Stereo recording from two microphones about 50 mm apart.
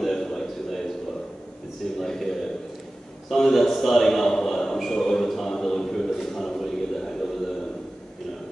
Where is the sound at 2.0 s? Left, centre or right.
Centre.